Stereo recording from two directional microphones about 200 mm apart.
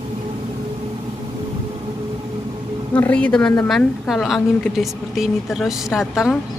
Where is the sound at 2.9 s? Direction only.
5° left (ahead or behind).